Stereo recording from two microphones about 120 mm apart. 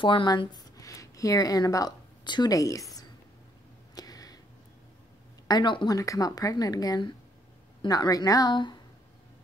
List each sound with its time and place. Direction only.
0.0 s speech: 45° left (ahead or behind)
3.9 s a sound: 30° left (ahead or behind)
5.5 s speech: 40° left (ahead or behind)
5.9 s speech: 30° left (ahead or behind)